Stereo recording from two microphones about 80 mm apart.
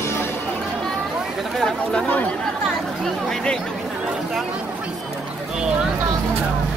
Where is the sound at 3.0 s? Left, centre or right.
Centre.